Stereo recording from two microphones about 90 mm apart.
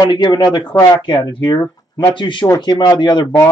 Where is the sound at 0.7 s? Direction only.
40° left (ahead or behind).